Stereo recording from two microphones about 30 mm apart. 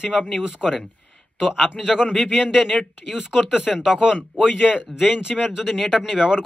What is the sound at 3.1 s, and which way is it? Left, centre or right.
Speech, centre.